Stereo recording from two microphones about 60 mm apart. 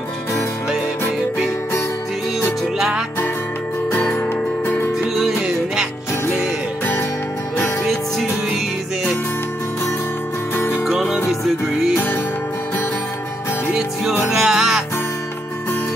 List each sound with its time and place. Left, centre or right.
3.9 s music: left
7.8 s music: centre
10.5 s music: left
10.9 s music: centre
14.3 s music: centre